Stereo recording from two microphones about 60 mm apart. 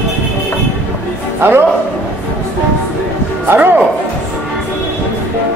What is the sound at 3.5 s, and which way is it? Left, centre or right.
Speech, right.